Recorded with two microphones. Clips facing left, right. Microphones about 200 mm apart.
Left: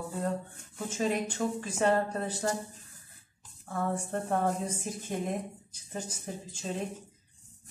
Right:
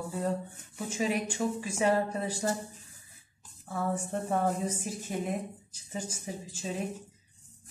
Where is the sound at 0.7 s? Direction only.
10° right (ahead or behind).